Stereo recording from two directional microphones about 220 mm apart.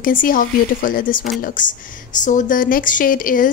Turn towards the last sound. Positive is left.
turn(degrees=40)  # may be behind; listen again after turning